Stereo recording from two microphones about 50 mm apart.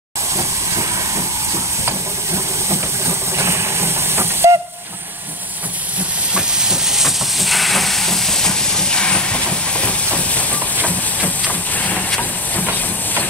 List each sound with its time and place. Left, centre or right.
0.3 s steam: right
1.9 s vehicle: right
6.3 s hiss: centre; by 11.9 s left